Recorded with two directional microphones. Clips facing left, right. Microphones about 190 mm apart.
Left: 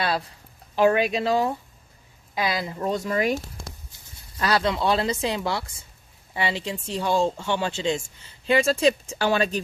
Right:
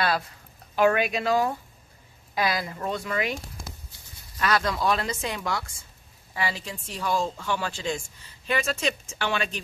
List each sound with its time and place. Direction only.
0.7 s speech: 30° left (ahead or behind)
2.9 s speech: 40° left (ahead or behind)
4.4 s speech: 30° left (ahead or behind)